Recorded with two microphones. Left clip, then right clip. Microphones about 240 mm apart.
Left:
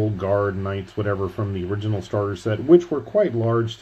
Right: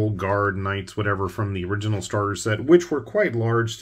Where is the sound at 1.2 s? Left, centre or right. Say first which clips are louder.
Even; centre.